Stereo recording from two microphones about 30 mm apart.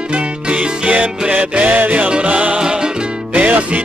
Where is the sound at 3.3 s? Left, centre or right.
Right.